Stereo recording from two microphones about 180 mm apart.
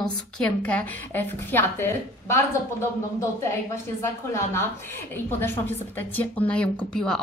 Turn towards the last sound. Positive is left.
turn(degrees=5)  # may be behind; listen again after turning